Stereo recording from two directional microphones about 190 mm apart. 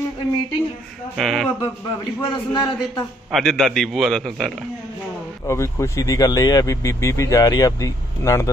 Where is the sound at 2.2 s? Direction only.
25° left (ahead or behind).